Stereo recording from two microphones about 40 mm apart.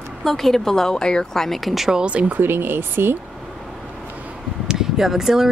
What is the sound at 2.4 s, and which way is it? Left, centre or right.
Speech, right.